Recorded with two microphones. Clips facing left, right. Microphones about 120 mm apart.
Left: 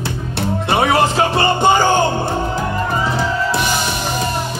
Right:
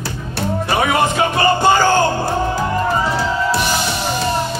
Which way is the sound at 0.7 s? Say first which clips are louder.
Left 2 dB; 30° left (ahead or behind).